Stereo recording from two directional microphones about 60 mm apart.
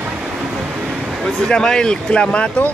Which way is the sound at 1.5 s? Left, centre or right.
Centre.